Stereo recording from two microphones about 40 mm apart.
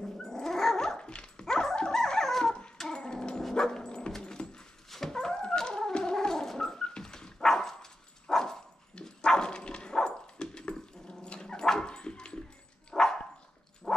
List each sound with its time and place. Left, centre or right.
0.2 s dog: centre
1.0 s dog: left
1.4 s dog: centre
2.8 s a sound: centre
3.4 s dog: centre
13.9 s a sound: centre